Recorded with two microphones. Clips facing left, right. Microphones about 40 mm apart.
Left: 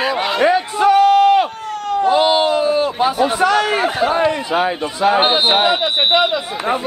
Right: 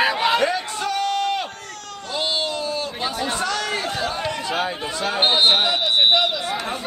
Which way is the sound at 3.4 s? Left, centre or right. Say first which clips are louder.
Left 10 dB; left.